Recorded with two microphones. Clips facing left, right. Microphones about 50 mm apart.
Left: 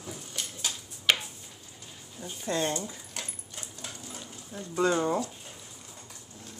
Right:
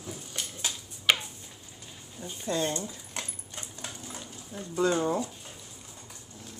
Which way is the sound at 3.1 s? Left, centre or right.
Right.